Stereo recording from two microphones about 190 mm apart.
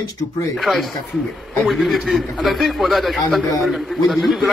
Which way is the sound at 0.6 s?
Centre (ahead or behind).